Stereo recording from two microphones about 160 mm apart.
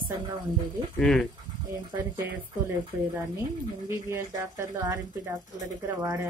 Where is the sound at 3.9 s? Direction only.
15° right (ahead or behind).